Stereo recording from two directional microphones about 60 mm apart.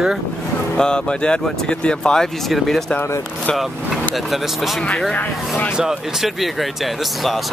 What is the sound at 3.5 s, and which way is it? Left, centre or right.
Speech, centre.